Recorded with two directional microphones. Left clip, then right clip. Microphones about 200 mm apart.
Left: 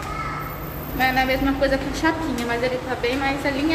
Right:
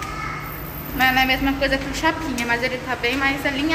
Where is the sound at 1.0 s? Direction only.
10° left (ahead or behind).